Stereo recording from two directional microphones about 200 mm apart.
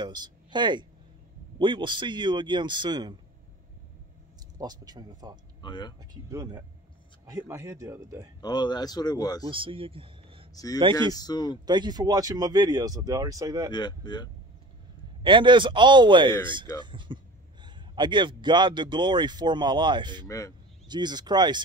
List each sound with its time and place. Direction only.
0.0 s a man's voice: 20° right (ahead or behind)
4.6 s a man's voice: 20° right (ahead or behind)
5.6 s speech: 20° left (ahead or behind)
6.3 s speech: 15° right (ahead or behind)
8.4 s speech: 20° left (ahead or behind)
9.5 s speech: 25° right (ahead or behind)
10.5 s speech: 20° left (ahead or behind)
10.8 s a man's voice: 25° right (ahead or behind)
11.1 s speech: 20° left (ahead or behind)
11.6 s a man's voice: 20° right (ahead or behind)
13.7 s speech: 20° left (ahead or behind)
15.2 s a man's voice: 25° right (ahead or behind)
20.2 s speech: 15° left (ahead or behind)
20.9 s a man's voice: 20° right (ahead or behind)